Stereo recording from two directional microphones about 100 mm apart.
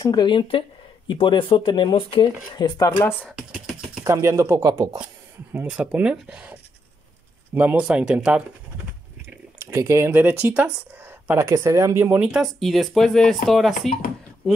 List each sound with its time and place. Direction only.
0.0 s speech: 45° left (ahead or behind)
2.0 s speech: 70° left (ahead or behind)
2.5 s speech: 45° left (ahead or behind)
3.0 s speech: 20° left (ahead or behind)
3.3 s speech: centre (ahead or behind)
4.1 s speech: 30° right (ahead or behind)
5.5 s speech: 15° right (ahead or behind)
9.6 s speech: 25° right (ahead or behind)
11.4 s speech: 30° right (ahead or behind)
12.3 s speech: centre (ahead or behind)